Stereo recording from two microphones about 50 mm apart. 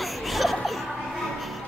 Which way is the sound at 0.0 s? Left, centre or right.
Centre.